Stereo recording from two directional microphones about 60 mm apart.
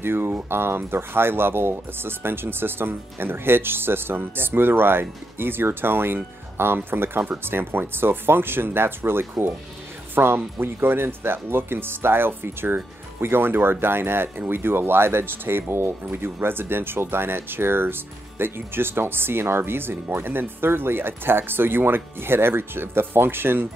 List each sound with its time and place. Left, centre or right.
0.0 s speech: right